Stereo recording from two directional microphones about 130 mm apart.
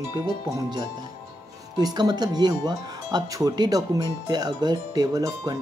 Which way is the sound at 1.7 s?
30° right (ahead or behind).